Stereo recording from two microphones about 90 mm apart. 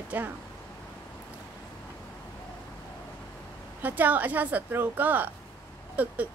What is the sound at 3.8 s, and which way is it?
A woman's voice, 20° right (ahead or behind).